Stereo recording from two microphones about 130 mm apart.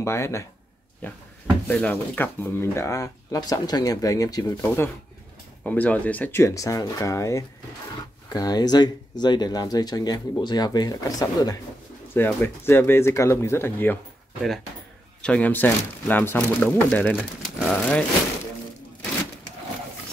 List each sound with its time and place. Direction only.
0.0 s speech: 20° left (ahead or behind)
4.6 s speech: 20° left (ahead or behind)
12.1 s speech: 15° left (ahead or behind)
15.2 s speech: 10° left (ahead or behind)